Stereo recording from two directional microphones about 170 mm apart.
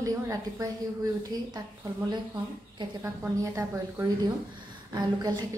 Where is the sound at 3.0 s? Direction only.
15° right (ahead or behind).